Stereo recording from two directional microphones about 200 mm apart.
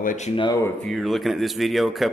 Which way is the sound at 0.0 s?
40° left (ahead or behind).